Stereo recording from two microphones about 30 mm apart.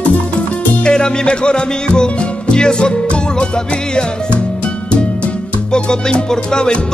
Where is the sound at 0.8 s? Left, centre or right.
Left.